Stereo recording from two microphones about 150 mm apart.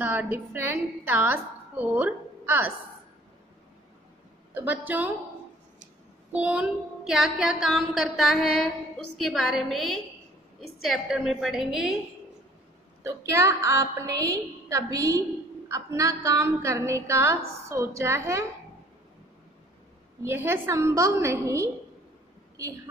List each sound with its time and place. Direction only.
0.0 s a woman's voice: 10° right (ahead or behind)
4.6 s a woman's voice: 10° right (ahead or behind)
6.3 s child singing: 10° right (ahead or behind)
13.3 s a woman's voice: 20° right (ahead or behind)
20.2 s a woman's voice: 15° right (ahead or behind)